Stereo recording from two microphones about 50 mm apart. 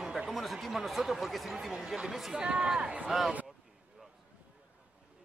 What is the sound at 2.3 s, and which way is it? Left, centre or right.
Speech, centre.